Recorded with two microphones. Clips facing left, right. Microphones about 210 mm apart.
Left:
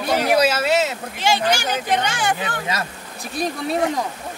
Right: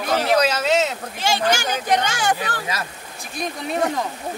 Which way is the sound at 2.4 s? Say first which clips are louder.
Left 2 dB; 25° left (ahead or behind).